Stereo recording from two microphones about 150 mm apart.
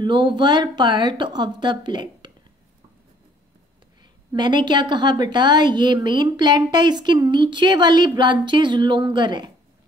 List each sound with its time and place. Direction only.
0.0 s speech: 30° right (ahead or behind)
4.3 s a woman's voice: 30° right (ahead or behind)